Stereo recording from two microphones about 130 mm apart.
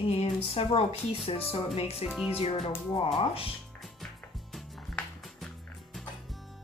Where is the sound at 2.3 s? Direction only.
50° left (ahead or behind).